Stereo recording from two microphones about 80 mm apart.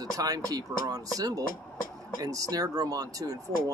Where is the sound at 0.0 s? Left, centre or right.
Right.